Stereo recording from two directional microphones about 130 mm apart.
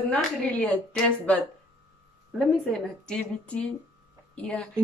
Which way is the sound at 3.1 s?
10° left (ahead or behind).